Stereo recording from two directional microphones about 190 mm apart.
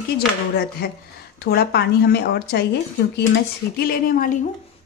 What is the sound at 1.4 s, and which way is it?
Speech, 55° left (ahead or behind).